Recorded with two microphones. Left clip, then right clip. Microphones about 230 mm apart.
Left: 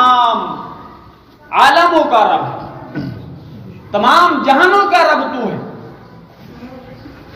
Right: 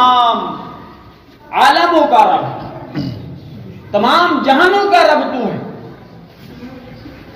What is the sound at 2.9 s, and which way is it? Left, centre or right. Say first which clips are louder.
Beatboxing: right 2 dB; right.